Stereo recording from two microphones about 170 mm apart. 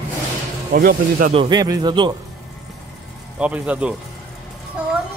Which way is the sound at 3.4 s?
5° right (ahead or behind).